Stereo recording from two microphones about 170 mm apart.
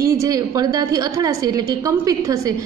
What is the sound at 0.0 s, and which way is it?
A woman's voice, 20° right (ahead or behind).